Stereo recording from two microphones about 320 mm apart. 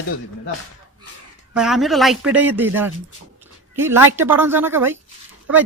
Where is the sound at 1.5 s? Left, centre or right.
Centre.